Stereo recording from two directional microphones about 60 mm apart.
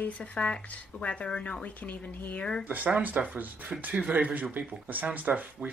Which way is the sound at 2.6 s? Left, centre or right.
Right.